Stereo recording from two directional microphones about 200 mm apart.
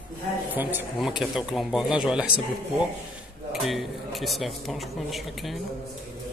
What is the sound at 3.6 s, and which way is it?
Speech, centre (ahead or behind).